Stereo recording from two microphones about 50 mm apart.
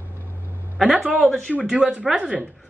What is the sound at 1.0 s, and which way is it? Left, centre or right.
Speech, right.